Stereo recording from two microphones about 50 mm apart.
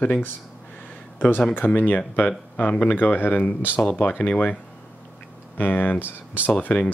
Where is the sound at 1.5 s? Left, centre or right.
Left.